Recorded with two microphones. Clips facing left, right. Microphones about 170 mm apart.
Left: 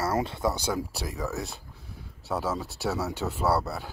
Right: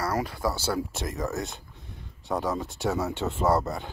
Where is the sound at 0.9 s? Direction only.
Centre (ahead or behind).